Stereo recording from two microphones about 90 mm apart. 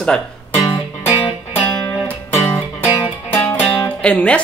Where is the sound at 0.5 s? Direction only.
30° left (ahead or behind).